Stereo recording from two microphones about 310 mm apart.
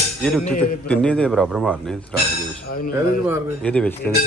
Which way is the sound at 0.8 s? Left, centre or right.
Centre.